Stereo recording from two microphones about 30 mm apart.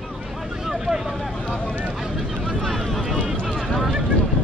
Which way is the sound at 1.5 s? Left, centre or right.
Centre.